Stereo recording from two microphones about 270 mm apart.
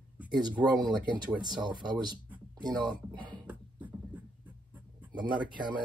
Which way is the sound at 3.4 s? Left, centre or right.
Centre.